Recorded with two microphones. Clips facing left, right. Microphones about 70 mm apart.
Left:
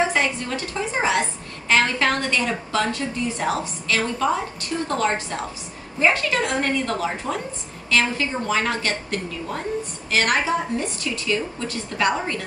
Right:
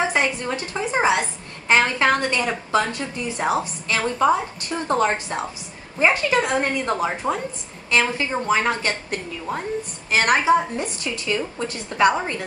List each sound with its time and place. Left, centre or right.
0.1 s a woman's voice: right